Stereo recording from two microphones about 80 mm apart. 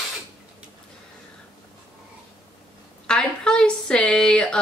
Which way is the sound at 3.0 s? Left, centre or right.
Centre.